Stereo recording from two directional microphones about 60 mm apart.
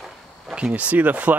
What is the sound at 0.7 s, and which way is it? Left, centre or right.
Speech, right.